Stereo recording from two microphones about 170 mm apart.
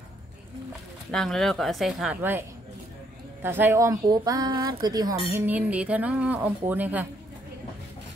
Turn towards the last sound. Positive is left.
turn(degrees=-10)  # may be behind; listen again after turning